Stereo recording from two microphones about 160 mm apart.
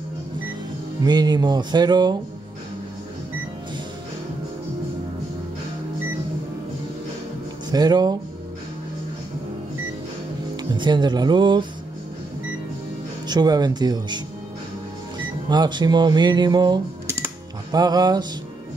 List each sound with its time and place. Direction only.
1.0 s speech: 25° right (ahead or behind)
7.7 s speech: 25° right (ahead or behind)
10.5 s speech: 25° right (ahead or behind)
13.3 s speech: 25° right (ahead or behind)
15.4 s speech: 25° right (ahead or behind)